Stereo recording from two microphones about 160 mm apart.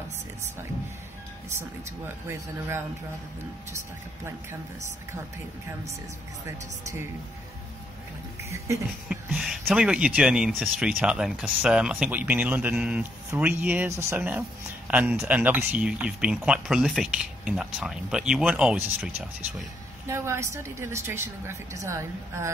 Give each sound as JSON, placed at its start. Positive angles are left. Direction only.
{"t": 1.9, "sound": "speech", "side_deg": -15}
{"t": 8.5, "sound": "speech", "side_deg": -20}
{"t": 9.3, "sound": "speech", "side_deg": -5}